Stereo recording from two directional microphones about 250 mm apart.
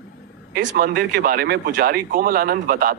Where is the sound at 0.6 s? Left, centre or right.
Right.